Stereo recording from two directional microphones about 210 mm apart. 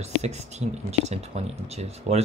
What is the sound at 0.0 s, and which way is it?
Speech, 30° right (ahead or behind).